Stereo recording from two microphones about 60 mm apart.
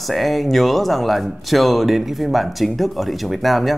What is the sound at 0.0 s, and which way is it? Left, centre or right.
Speech, centre.